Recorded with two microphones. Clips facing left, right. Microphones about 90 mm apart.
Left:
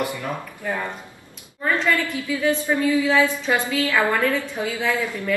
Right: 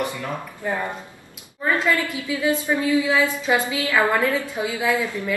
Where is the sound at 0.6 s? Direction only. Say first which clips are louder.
Right 1 dB; 20° right (ahead or behind).